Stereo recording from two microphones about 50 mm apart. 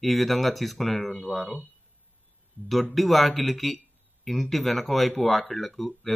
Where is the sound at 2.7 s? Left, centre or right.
Centre.